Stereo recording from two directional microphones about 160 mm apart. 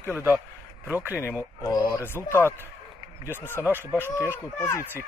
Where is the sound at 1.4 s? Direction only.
20° left (ahead or behind).